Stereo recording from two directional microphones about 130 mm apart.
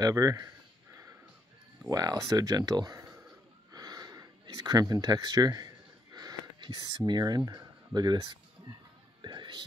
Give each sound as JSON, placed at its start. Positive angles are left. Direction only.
{"t": 0.0, "sound": "speech", "side_deg": -25}
{"t": 1.9, "sound": "speech", "side_deg": -30}
{"t": 3.7, "sound": "a sound", "side_deg": -30}
{"t": 9.2, "sound": "whispering", "side_deg": -35}